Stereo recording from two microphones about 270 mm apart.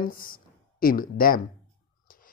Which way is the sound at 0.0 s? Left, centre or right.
Left.